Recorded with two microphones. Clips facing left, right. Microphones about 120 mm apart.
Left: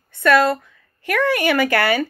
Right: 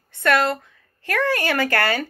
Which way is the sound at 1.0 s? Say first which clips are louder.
Left 3 dB; 20° left (ahead or behind).